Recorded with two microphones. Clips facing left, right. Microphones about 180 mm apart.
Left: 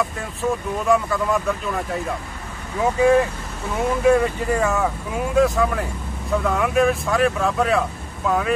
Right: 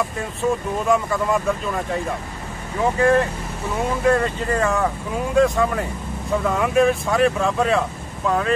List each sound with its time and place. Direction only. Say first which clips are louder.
0.4 s speech: right 1 dB; centre (ahead or behind)
3.0 s speech: left 2 dB; 5° left (ahead or behind)